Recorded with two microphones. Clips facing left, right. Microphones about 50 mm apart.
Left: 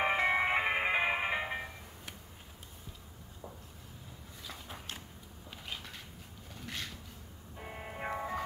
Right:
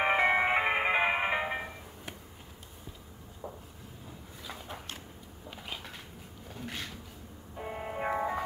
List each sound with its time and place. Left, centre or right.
0.0 s music: centre
6.5 s a sound: centre
7.5 s music: centre